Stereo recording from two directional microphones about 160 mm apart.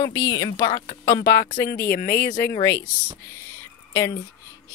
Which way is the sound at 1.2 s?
70° left (ahead or behind).